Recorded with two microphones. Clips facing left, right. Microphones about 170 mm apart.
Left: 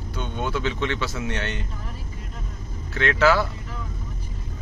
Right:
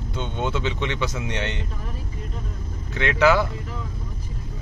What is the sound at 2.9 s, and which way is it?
Speech, 15° right (ahead or behind).